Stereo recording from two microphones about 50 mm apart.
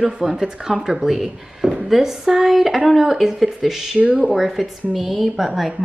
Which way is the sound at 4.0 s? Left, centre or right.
Right.